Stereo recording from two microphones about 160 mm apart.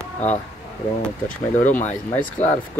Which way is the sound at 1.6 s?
50° left (ahead or behind).